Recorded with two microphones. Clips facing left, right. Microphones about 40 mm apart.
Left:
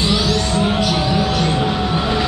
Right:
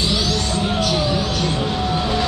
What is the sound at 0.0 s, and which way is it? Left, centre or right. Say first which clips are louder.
Music: left 3 dB; centre.